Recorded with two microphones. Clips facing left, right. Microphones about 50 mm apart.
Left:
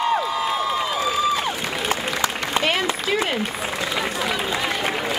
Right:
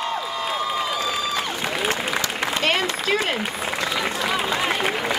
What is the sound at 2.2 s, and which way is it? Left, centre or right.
Applause, centre.